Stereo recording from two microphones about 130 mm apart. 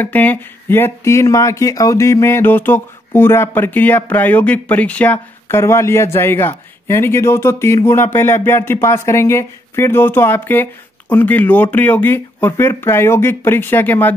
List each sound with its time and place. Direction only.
0.0 s speech: 15° left (ahead or behind)